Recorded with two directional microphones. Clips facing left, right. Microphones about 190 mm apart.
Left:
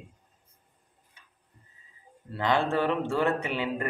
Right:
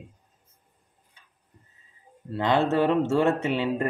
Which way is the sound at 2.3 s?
25° right (ahead or behind).